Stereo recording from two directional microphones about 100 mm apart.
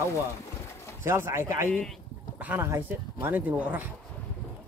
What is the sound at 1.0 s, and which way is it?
A man's voice, 25° right (ahead or behind).